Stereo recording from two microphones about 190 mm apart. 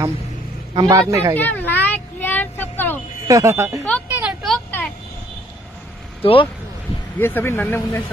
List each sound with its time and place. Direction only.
0.7 s speech: 20° right (ahead or behind)
1.3 s a sound: 10° left (ahead or behind)
3.3 s speech: 15° right (ahead or behind)
4.1 s vehicle: 5° right (ahead or behind)
4.6 s a sound: 10° left (ahead or behind)
6.2 s speech: 25° left (ahead or behind)
7.2 s speech: 10° left (ahead or behind)